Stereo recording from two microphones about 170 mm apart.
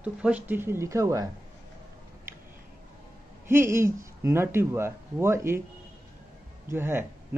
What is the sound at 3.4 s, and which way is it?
A man's voice, 15° right (ahead or behind).